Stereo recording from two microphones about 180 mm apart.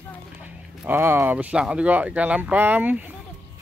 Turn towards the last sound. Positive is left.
turn(degrees=-10)  # may be behind; listen again after turning